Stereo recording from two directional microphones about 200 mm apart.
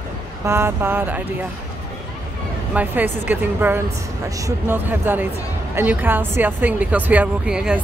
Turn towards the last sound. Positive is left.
turn(degrees=-5)  # may be behind; listen again after turning